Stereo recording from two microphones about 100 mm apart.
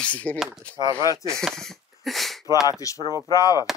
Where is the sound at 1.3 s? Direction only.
5° left (ahead or behind).